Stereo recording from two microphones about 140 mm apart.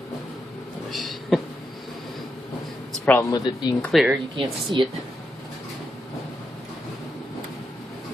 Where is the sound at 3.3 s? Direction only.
30° left (ahead or behind).